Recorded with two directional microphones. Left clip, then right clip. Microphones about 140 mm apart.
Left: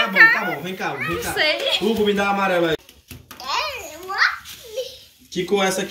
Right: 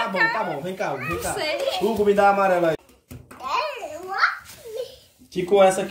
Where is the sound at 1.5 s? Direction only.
15° right (ahead or behind).